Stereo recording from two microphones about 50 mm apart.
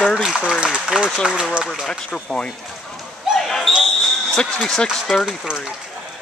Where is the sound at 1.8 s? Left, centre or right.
Centre.